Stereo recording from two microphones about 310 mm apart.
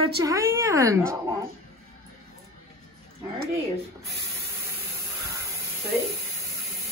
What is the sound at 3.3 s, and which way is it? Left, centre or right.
Speech, right.